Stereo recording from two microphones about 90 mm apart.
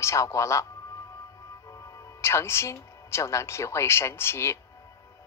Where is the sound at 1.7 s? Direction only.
35° left (ahead or behind).